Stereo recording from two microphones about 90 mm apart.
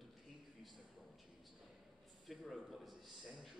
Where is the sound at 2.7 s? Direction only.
Centre (ahead or behind).